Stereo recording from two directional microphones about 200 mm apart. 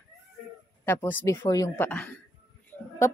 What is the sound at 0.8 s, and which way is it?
A woman's voice, 10° left (ahead or behind).